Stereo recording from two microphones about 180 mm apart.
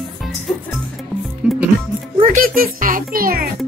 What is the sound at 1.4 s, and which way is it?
Music, 5° right (ahead or behind).